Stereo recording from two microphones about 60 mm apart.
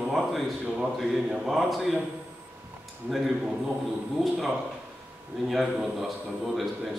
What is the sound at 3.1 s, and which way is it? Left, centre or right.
Speech, centre.